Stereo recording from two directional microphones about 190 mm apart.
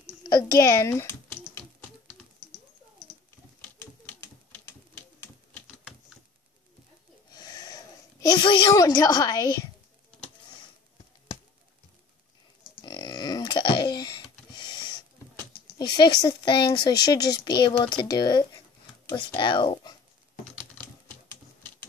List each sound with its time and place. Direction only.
0.3 s typing: 20° left (ahead or behind)
3.6 s typewriter: 10° left (ahead or behind)
7.3 s speech: 20° left (ahead or behind)
12.8 s a sound: 20° left (ahead or behind)
15.3 s speech: 20° left (ahead or behind)